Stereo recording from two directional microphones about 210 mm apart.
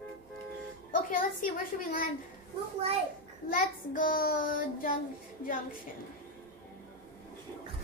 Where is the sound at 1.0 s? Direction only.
40° left (ahead or behind).